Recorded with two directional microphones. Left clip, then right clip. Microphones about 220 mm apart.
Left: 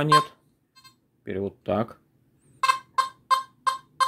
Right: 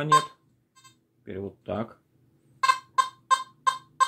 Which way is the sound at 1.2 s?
45° left (ahead or behind).